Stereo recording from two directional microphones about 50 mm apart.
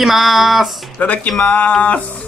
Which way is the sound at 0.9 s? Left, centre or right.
Left.